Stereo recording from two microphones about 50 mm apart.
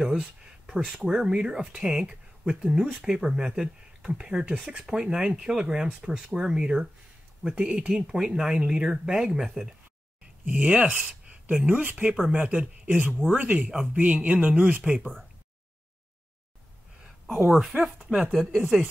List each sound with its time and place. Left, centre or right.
0.0 s a sound: centre
1.0 s speech: centre
10.2 s a sound: right
11.6 s a man's voice: right
18.0 s a man's voice: right
18.3 s speech: centre